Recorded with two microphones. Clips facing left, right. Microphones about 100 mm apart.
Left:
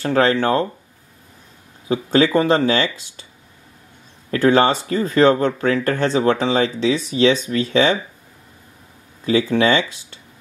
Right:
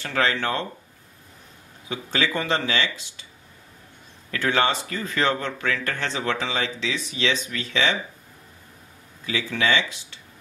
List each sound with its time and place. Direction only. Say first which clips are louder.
0.0 s speech: left 8 dB; 40° left (ahead or behind)
1.9 s speech: left 10 dB; 40° left (ahead or behind)
4.3 s speech: left 8 dB; 40° left (ahead or behind)
9.2 s speech: left 9 dB; 40° left (ahead or behind)